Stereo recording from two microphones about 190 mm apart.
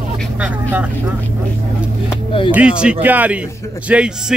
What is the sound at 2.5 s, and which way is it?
Speech, 5° right (ahead or behind).